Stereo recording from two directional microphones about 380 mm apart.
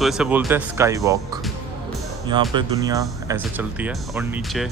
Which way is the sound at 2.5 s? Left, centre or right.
Centre.